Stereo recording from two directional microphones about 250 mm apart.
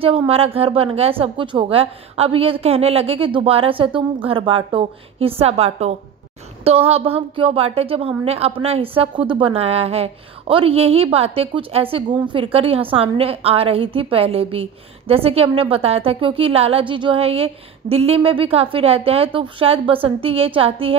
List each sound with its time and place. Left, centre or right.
0.0 s a woman's voice: right